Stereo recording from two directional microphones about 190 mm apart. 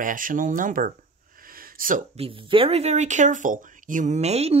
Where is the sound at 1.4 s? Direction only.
50° right (ahead or behind).